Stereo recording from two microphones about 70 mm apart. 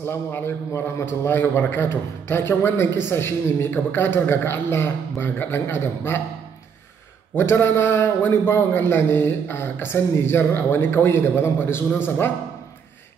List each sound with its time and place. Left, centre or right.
0.0 s a man's voice: left
7.3 s a man's voice: left